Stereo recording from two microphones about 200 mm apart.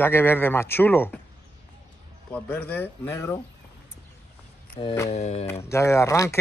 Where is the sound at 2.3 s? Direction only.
5° left (ahead or behind).